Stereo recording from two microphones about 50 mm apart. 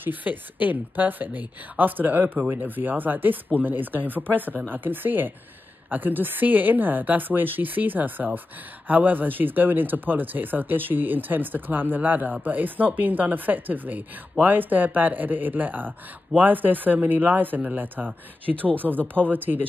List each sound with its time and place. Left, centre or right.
0.0 s speech: right